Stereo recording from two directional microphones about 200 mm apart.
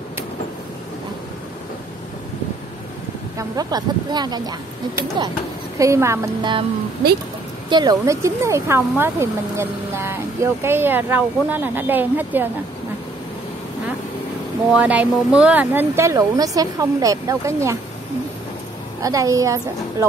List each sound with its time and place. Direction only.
3.3 s speech: 20° right (ahead or behind)
7.7 s speech: 20° right (ahead or behind)
14.7 s speech: 5° right (ahead or behind)
19.0 s speech: 15° right (ahead or behind)